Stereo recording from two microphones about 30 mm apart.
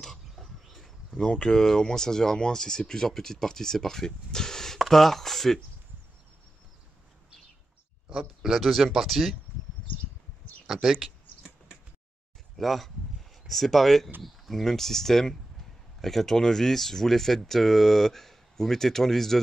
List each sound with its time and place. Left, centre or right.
1.1 s speech: left
4.7 s speech: centre
8.1 s speech: centre
8.5 s speech: centre
10.7 s a sound: centre
12.5 s speech: centre